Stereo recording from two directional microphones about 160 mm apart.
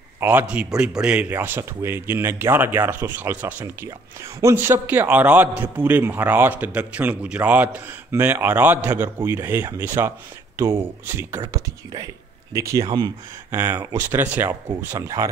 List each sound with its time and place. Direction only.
0.2 s speech: 10° right (ahead or behind)